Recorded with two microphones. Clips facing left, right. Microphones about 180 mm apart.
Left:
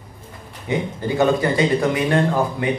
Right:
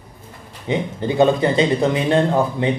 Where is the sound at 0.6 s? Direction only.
20° right (ahead or behind).